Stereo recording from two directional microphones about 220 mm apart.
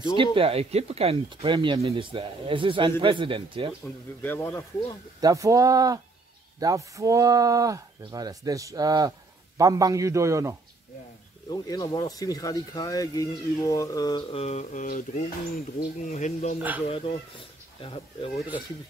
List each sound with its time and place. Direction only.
0.1 s speech: 25° right (ahead or behind)
4.2 s speech: 10° left (ahead or behind)
5.2 s speech: 15° right (ahead or behind)
11.5 s speech: 15° left (ahead or behind)